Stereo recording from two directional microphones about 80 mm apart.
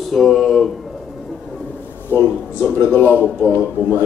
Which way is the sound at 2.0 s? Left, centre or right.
Left.